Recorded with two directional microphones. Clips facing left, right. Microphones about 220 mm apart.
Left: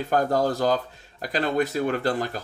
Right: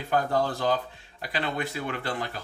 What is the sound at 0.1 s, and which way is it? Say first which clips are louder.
Speech: left 3 dB; 40° left (ahead or behind).